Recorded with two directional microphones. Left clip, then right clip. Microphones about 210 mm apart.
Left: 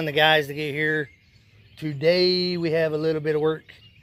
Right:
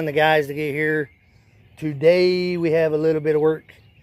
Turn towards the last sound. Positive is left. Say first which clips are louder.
# right 4 dB
turn(degrees=-5)  # may be behind; listen again after turning